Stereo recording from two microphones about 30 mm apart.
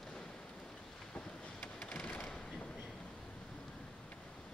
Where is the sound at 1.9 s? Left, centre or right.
Left.